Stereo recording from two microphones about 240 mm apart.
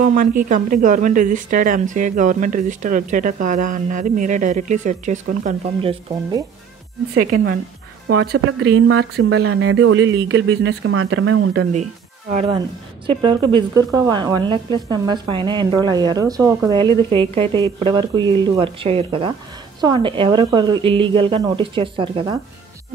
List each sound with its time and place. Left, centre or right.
0.0 s a woman's voice: right
7.2 s a woman's voice: right
8.3 s speech: right
10.8 s speech: right
11.7 s a woman's voice: right